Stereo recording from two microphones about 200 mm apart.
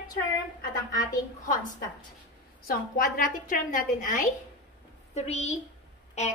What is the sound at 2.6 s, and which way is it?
A woman's voice, 50° left (ahead or behind).